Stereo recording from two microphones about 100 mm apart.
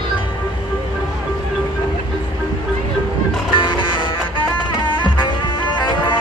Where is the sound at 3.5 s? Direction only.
55° left (ahead or behind).